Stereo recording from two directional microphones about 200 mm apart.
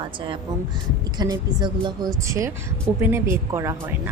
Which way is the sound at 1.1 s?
20° right (ahead or behind).